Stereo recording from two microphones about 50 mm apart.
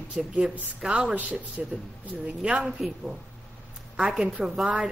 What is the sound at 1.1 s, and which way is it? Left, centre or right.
Speech, right.